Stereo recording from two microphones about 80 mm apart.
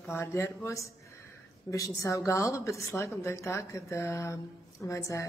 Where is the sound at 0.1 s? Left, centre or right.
Left.